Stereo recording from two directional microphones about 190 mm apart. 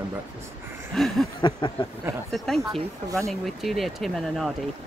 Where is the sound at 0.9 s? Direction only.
Centre (ahead or behind).